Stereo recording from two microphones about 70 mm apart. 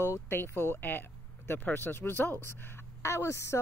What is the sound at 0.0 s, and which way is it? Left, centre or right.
Speech, left.